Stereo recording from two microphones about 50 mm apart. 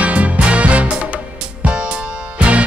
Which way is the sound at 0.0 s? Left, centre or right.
Right.